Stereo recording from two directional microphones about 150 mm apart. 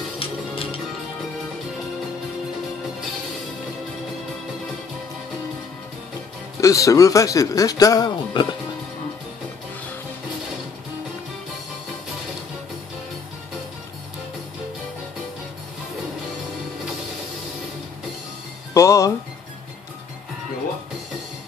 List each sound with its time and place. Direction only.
0.2 s music: 40° left (ahead or behind)
6.6 s speech: 20° left (ahead or behind)
18.7 s music: 20° left (ahead or behind)